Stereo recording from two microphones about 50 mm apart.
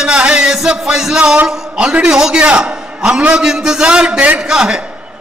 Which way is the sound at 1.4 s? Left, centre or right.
Centre.